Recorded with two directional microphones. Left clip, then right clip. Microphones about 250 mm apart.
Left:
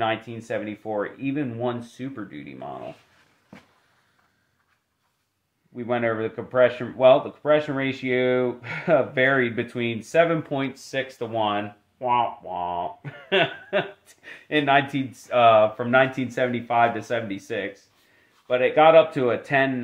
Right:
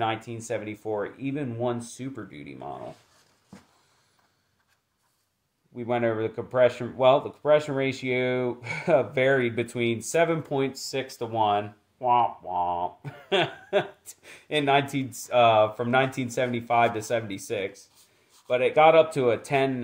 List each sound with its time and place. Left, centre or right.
0.0 s speech: right
5.8 s speech: right